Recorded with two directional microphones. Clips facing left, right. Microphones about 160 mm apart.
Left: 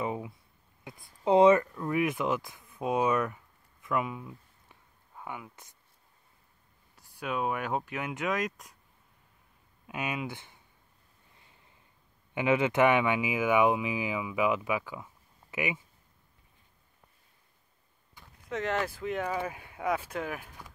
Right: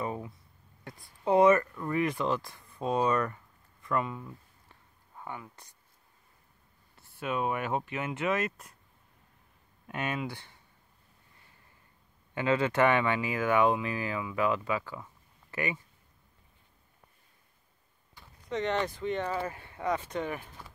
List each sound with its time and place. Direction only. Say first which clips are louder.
0.0 s a sound: left 2 dB; 15° left (ahead or behind)
0.8 s speech: left 2 dB; 20° left (ahead or behind)
3.8 s a sound: even; 10° left (ahead or behind)
7.2 s speech: right 1 dB; centre (ahead or behind)
9.8 s speech: right 1 dB; 5° left (ahead or behind)
10.3 s speech: left 1 dB; 15° left (ahead or behind)
12.4 s speech: left 1 dB; 15° left (ahead or behind)
18.1 s speech: right 2 dB; 5° left (ahead or behind)